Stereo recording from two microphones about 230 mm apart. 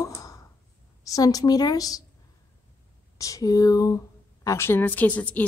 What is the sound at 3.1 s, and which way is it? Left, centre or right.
A woman's voice, centre.